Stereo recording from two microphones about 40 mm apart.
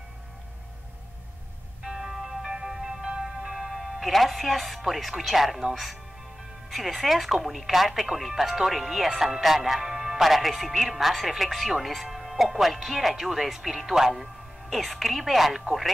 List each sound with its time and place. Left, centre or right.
1.9 s music: centre
3.7 s speech: centre
6.7 s speech: centre